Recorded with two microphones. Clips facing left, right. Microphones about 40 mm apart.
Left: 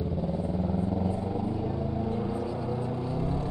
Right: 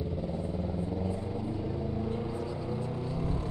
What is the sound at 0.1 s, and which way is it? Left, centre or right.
Vehicle, centre.